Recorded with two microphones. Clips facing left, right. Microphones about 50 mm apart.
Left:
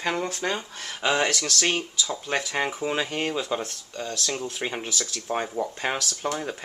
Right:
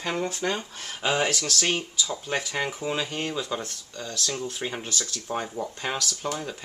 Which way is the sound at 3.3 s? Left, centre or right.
Centre.